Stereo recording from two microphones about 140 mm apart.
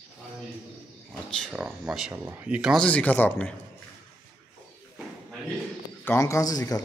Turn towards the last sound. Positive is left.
turn(degrees=25)  # may be behind; listen again after turning